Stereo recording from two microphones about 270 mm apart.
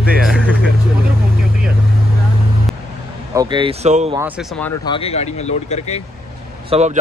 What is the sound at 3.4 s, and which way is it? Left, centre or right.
Speech, centre.